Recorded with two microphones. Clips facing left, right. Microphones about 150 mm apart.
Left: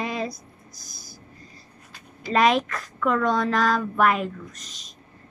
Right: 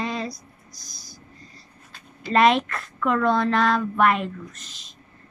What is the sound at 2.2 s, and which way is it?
Speech, centre (ahead or behind).